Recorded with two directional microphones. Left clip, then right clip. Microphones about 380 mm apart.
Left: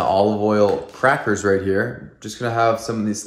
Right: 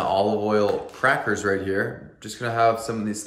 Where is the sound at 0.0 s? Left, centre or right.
Centre.